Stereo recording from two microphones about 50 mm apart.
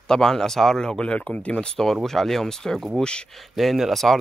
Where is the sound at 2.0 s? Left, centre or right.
Centre.